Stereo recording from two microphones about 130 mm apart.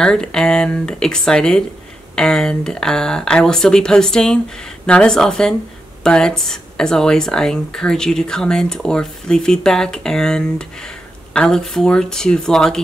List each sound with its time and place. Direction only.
0.0 s speech: 5° left (ahead or behind)